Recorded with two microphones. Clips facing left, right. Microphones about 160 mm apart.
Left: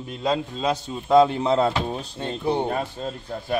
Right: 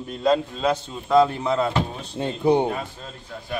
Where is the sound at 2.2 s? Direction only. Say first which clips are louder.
Right 6 dB; 15° right (ahead or behind).